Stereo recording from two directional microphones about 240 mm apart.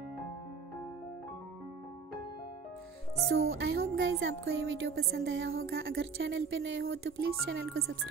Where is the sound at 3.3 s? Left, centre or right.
Right.